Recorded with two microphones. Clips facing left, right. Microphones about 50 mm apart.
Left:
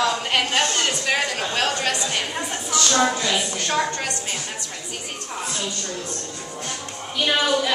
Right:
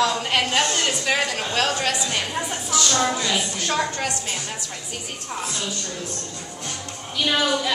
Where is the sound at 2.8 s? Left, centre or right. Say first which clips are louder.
Left 3 dB; centre.